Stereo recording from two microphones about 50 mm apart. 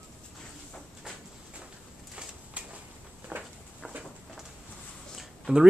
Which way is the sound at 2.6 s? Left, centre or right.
Right.